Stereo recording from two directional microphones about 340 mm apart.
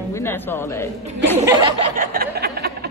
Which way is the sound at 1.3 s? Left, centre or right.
Right.